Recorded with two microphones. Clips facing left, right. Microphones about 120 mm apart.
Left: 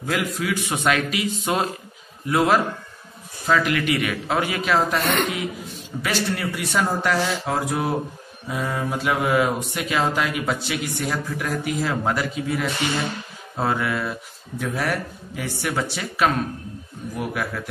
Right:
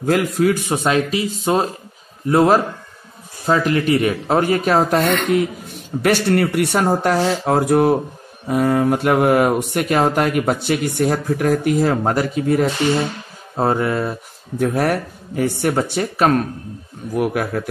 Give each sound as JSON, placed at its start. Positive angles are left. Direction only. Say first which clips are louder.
{"t": 0.0, "sound": "a man's voice", "louder": "right 9 dB", "side_deg": -55}
{"t": 6.9, "sound": "speech", "louder": "right 6 dB", "side_deg": -40}
{"t": 14.6, "sound": "speech", "louder": "right 7 dB", "side_deg": -50}